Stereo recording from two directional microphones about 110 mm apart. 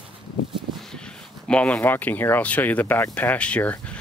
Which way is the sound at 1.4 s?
10° left (ahead or behind).